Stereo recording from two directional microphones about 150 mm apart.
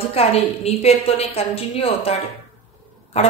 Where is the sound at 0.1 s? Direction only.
40° left (ahead or behind).